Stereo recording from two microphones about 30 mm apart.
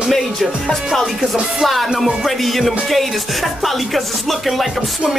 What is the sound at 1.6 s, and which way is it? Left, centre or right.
Music, centre.